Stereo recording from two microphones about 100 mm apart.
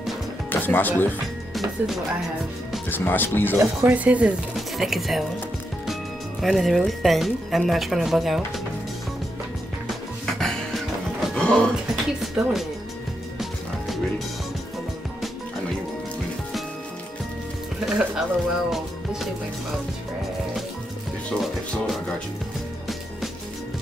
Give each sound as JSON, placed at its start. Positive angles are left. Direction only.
{"t": 0.5, "sound": "speech", "side_deg": 20}
{"t": 1.5, "sound": "music", "side_deg": 0}
{"t": 2.9, "sound": "speech", "side_deg": 20}
{"t": 3.5, "sound": "speech", "side_deg": -25}
{"t": 4.0, "sound": "speech", "side_deg": -15}
{"t": 4.6, "sound": "speech", "side_deg": 0}
{"t": 6.4, "sound": "speech", "side_deg": 0}
{"t": 10.2, "sound": "music", "side_deg": 0}
{"t": 11.7, "sound": "speech", "side_deg": 0}
{"t": 17.7, "sound": "speech", "side_deg": -5}
{"t": 21.4, "sound": "speech", "side_deg": 0}